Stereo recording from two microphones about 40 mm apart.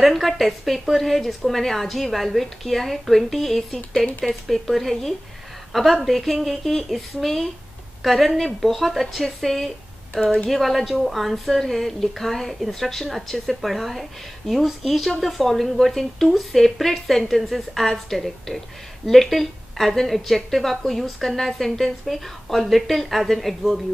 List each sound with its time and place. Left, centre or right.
0.0 s a woman's voice: centre
4.0 s speech: centre
4.5 s a woman's voice: centre